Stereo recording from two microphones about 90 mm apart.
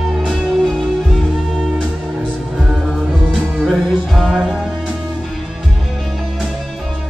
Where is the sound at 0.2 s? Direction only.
5° right (ahead or behind).